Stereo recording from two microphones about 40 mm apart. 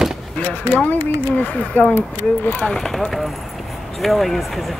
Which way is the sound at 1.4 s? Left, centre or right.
Left.